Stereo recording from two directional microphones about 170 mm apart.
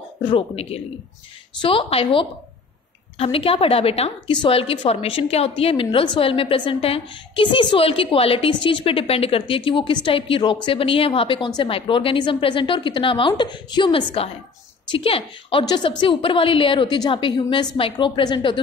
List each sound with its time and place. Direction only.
0.2 s a woman's voice: 35° left (ahead or behind)